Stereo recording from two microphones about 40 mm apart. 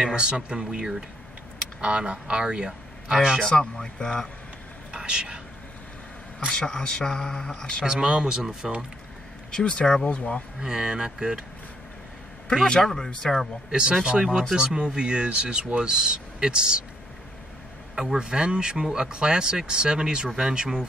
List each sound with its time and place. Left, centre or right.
0.0 s speech: right
3.1 s speech: centre
3.3 s speech: centre
4.9 s speech: right
6.5 s speech: left
7.8 s speech: right
9.5 s speech: centre
10.0 s speech: left
10.6 s speech: centre
12.8 s speech: centre
13.7 s speech: right
17.9 s speech: centre